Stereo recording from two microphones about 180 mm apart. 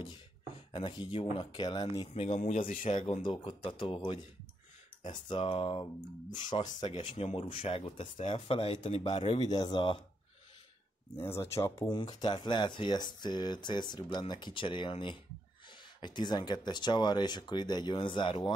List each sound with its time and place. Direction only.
0.7 s speech: 25° left (ahead or behind)
7.1 s speech: 35° left (ahead or behind)
11.4 s speech: 15° left (ahead or behind)